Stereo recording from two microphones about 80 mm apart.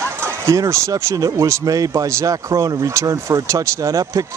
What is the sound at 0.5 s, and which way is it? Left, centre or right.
Speech, right.